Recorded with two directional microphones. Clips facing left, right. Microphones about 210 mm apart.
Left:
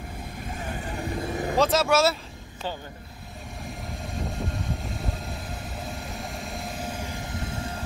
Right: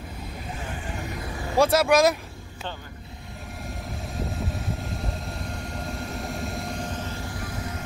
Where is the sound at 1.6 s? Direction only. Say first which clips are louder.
Right 3 dB; 10° right (ahead or behind).